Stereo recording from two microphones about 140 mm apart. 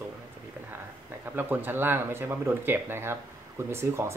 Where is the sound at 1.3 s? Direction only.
15° right (ahead or behind).